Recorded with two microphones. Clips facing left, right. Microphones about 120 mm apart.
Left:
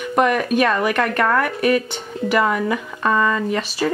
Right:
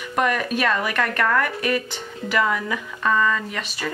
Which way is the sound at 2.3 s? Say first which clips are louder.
Left 4 dB; 30° left (ahead or behind).